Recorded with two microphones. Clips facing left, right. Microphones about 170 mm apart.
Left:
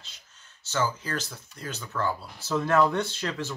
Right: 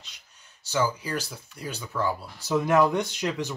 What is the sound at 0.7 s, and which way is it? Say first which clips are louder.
Speech: right 2 dB; 10° right (ahead or behind).